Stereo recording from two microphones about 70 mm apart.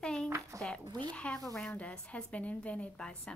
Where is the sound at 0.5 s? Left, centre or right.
Right.